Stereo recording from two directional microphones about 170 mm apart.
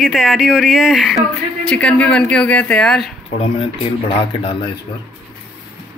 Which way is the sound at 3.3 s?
35° left (ahead or behind).